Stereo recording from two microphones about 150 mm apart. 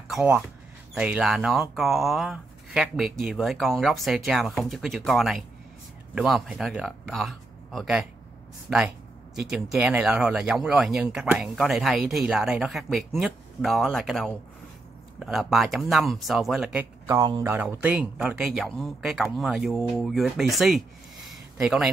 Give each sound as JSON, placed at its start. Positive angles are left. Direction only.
{"t": 0.1, "sound": "speech", "side_deg": -5}
{"t": 17.0, "sound": "speech", "side_deg": -25}
{"t": 17.5, "sound": "speech", "side_deg": -10}